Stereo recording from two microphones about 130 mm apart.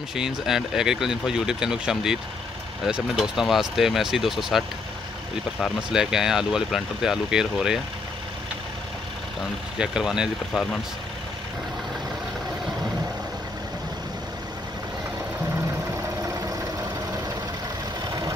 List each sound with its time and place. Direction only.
0.1 s speech: 5° right (ahead or behind)
9.8 s speech: 5° right (ahead or behind)
15.5 s vehicle: 25° right (ahead or behind)
18.0 s vehicle: 30° right (ahead or behind)